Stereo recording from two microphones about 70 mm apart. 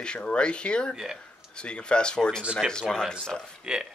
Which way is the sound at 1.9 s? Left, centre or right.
Centre.